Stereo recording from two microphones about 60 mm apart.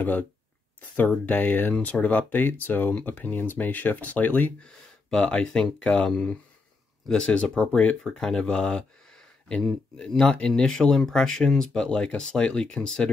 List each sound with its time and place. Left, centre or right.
0.7 s speech: left
4.6 s speech: centre
8.0 s speech: centre